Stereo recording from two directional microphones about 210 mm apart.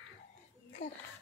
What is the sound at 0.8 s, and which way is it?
Speech, 35° left (ahead or behind).